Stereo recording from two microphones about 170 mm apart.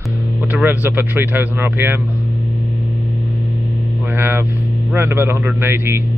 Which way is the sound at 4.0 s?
10° right (ahead or behind).